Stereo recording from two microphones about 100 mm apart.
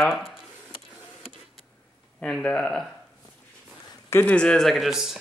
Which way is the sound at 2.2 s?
10° left (ahead or behind).